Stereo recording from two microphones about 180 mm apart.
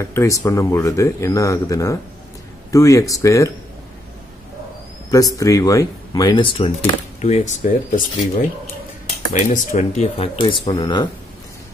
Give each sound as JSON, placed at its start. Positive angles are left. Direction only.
{"t": 0.0, "sound": "speech", "side_deg": 15}
{"t": 5.1, "sound": "speech", "side_deg": 20}
{"t": 7.2, "sound": "speech", "side_deg": 40}
{"t": 9.3, "sound": "speech", "side_deg": 45}